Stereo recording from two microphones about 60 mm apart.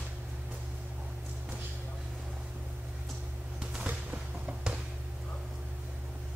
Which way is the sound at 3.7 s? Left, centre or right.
Right.